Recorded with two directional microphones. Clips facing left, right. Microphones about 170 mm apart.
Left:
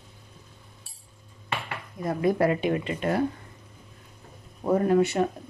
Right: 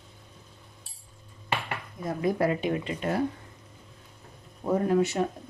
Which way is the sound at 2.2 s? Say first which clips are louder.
Left 3 dB; 65° left (ahead or behind).